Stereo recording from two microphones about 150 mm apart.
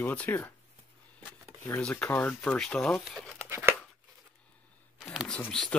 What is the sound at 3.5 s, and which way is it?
Tearing, 15° right (ahead or behind).